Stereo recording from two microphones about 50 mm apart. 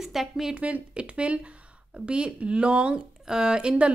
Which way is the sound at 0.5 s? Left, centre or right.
Right.